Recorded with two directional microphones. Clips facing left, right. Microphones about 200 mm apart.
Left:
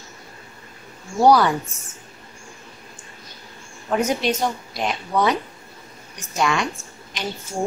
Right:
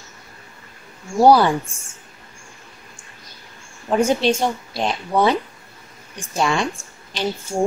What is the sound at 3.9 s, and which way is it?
Speech, 30° right (ahead or behind).